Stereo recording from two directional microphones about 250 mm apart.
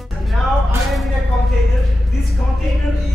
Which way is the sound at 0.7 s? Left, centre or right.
Centre.